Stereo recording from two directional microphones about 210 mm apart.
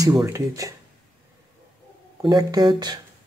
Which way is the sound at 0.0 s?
15° right (ahead or behind).